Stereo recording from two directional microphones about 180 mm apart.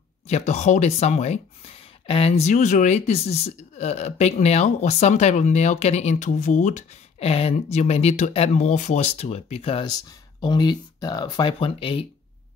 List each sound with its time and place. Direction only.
0.3 s speech: 40° left (ahead or behind)